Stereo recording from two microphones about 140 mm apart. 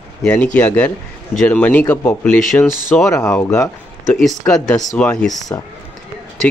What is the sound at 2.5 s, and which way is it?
Speech, 25° left (ahead or behind).